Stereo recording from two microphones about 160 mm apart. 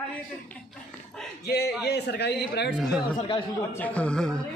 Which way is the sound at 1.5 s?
85° left.